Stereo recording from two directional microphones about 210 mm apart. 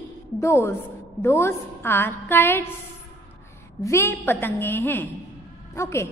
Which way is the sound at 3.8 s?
10° left (ahead or behind).